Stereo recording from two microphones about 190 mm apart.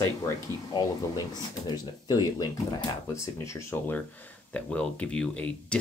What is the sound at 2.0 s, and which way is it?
Speech, 20° left (ahead or behind).